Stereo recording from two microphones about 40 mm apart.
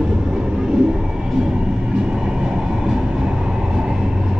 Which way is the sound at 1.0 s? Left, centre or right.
Centre.